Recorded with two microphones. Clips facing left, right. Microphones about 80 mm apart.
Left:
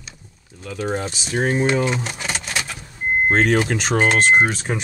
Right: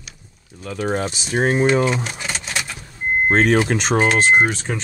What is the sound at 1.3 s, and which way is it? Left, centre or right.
Speech, right.